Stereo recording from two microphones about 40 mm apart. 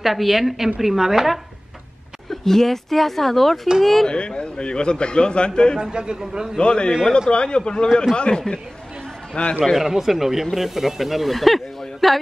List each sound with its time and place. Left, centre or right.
0.0 s speech: centre
2.2 s speech: centre
4.1 s a man's voice: left
5.8 s a man's voice: right
6.6 s a man's voice: left
9.8 s speech: centre